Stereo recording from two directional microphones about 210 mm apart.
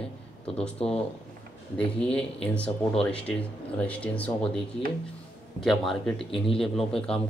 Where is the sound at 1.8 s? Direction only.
5° left (ahead or behind).